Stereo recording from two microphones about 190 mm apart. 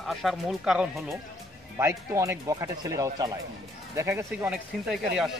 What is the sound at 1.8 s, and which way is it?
Speech, 15° right (ahead or behind).